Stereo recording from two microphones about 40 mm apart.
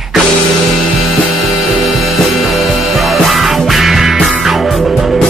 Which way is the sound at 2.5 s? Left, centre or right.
Centre.